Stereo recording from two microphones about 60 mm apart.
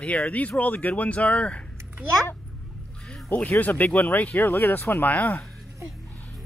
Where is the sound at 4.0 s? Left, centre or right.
Left.